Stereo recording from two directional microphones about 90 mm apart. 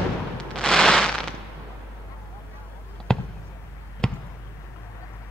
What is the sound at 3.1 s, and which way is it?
Fireworks, 5° left (ahead or behind).